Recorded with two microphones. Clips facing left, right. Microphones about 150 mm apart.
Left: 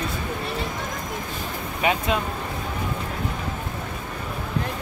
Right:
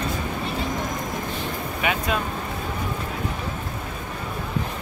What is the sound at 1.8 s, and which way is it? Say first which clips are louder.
Speech: left 3 dB; 30° left (ahead or behind).